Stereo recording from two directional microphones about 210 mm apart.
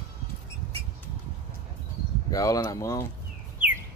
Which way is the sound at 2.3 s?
15° left (ahead or behind).